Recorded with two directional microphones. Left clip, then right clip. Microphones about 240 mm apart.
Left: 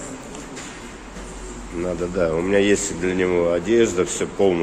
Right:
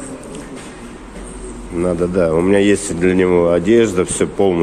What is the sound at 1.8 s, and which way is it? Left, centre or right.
Speech, centre.